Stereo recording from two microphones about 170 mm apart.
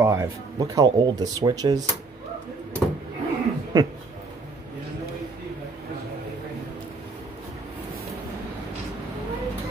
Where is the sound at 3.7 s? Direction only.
20° right (ahead or behind).